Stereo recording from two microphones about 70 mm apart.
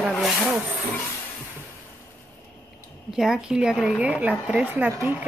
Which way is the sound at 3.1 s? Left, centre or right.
Centre.